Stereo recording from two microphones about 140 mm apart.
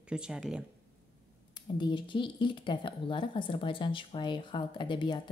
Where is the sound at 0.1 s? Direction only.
5° right (ahead or behind).